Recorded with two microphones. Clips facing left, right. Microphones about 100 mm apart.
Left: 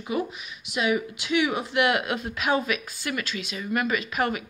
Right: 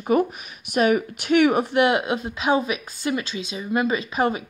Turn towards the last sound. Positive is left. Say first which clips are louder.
# right 4 dB
turn(degrees=-25)  # may be behind; listen again after turning